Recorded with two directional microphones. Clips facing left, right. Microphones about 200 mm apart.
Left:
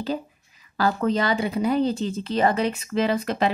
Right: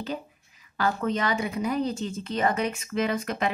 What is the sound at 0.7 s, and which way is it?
Speech, 35° left (ahead or behind).